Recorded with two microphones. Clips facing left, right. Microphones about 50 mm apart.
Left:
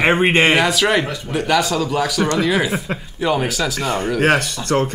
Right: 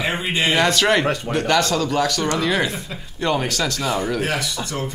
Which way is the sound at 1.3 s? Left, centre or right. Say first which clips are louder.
Left 3 dB; centre.